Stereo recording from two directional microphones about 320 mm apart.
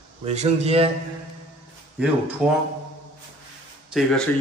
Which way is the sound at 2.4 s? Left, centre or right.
Centre.